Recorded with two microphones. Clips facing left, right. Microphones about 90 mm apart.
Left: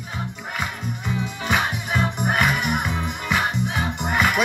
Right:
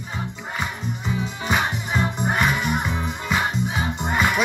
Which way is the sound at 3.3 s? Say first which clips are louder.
Even; 20° right (ahead or behind).